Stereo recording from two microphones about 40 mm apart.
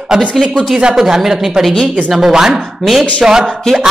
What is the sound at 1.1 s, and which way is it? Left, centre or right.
Speech, centre.